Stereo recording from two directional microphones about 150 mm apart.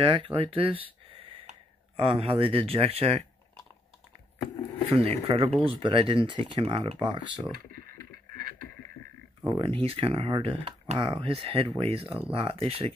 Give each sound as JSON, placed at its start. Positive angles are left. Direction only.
{"t": 0.0, "sound": "speech", "side_deg": -35}
{"t": 4.9, "sound": "speech", "side_deg": -40}
{"t": 9.5, "sound": "speech", "side_deg": -35}